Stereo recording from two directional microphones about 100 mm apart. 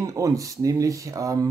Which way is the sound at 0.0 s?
35° right (ahead or behind).